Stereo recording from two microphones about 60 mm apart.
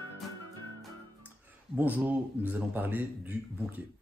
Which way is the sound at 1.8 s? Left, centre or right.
Right.